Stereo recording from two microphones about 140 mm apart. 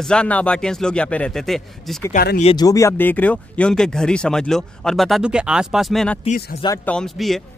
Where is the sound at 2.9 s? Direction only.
15° left (ahead or behind).